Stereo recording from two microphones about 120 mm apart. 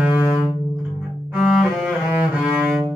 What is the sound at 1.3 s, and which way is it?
Cello, 5° right (ahead or behind).